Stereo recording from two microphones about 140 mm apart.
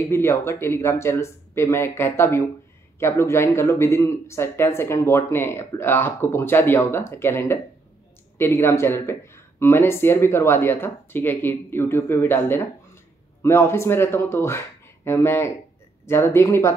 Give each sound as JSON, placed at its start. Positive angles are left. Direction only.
{"t": 0.1, "sound": "speech", "side_deg": 20}